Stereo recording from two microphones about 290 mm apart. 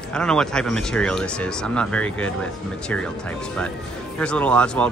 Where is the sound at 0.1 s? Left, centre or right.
Centre.